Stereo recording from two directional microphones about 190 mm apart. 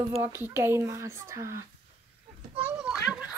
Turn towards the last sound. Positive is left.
turn(degrees=-5)  # may be behind; listen again after turning